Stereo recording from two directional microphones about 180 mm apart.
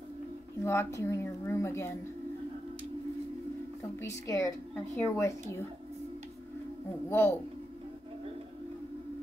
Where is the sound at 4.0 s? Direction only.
15° left (ahead or behind).